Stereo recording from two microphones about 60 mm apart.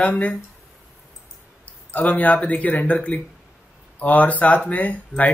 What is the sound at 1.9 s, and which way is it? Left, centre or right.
Speech, left.